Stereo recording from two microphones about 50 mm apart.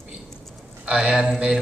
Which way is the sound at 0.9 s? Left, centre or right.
Right.